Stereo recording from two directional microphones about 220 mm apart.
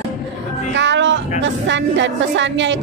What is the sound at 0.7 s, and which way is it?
Speech, 55° right (ahead or behind).